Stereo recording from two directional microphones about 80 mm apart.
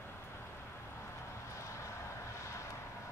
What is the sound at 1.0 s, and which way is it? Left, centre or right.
Vehicle, left.